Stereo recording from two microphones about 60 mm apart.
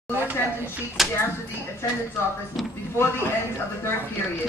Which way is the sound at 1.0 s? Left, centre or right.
Centre.